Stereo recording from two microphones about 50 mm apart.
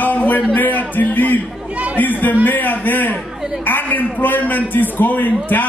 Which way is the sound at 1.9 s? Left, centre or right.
Left.